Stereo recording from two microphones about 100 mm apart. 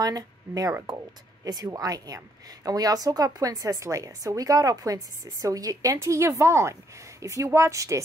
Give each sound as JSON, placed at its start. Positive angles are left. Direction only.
{"t": 0.0, "sound": "speech", "side_deg": -40}